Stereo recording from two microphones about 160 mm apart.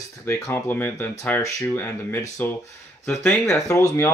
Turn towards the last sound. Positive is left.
turn(degrees=15)  # may be behind; listen again after turning